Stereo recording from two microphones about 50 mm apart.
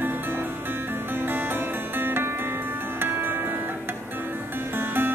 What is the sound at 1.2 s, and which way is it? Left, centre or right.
Music, right.